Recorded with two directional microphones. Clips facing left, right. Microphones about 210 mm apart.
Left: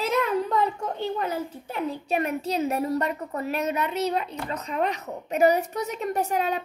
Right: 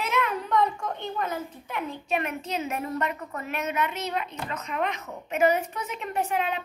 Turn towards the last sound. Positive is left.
turn(degrees=40)  # may be behind; listen again after turning